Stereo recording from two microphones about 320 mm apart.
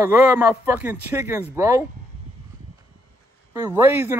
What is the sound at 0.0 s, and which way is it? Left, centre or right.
A man's voice, centre.